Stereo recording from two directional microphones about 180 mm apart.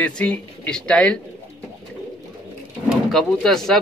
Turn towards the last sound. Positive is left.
turn(degrees=0)  # may be behind; listen again after turning